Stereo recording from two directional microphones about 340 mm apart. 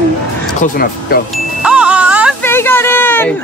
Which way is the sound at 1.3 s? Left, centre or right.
Centre.